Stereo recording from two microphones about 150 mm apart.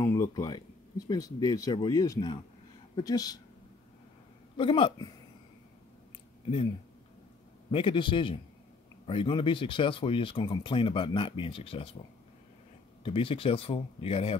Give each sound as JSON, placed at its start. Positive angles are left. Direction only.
{"t": 0.0, "sound": "speech", "side_deg": 20}
{"t": 4.6, "sound": "speech", "side_deg": 35}
{"t": 7.7, "sound": "speech", "side_deg": 35}
{"t": 13.0, "sound": "speech", "side_deg": 35}